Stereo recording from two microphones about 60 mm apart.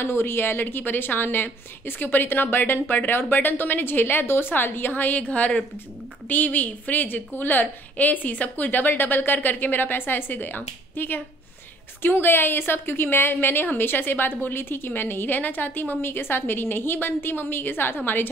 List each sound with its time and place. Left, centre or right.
0.0 s a woman's voice: left